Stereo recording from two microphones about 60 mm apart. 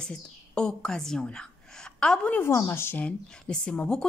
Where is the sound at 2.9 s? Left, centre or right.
Centre.